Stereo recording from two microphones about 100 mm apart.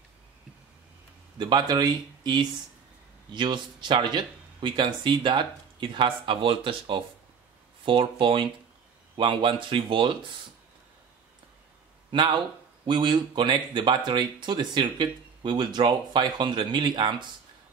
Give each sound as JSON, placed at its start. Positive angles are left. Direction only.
{"t": 1.4, "sound": "speech", "side_deg": -45}
{"t": 12.1, "sound": "speech", "side_deg": -50}